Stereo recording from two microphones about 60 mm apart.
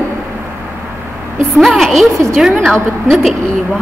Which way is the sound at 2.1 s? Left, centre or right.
Right.